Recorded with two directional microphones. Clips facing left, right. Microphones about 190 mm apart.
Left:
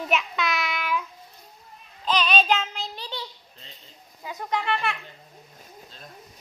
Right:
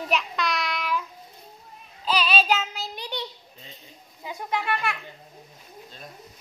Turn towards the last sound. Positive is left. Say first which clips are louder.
# left 1 dB
turn(degrees=0)  # may be behind; listen again after turning